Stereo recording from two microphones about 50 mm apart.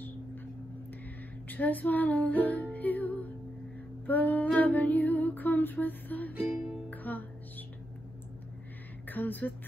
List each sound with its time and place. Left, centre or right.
1.5 s humming: left
2.7 s music: left
4.6 s humming: left
6.9 s music: left
9.0 s speech: left